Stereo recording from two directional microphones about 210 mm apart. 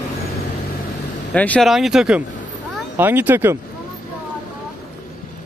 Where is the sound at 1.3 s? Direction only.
5° left (ahead or behind).